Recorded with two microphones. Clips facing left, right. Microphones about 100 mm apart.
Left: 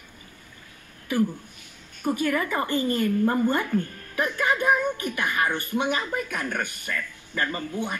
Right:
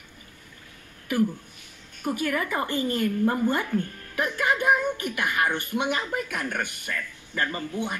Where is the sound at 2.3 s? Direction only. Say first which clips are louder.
Even; centre (ahead or behind).